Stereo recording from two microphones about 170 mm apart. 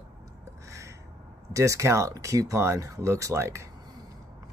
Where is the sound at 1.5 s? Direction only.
20° right (ahead or behind).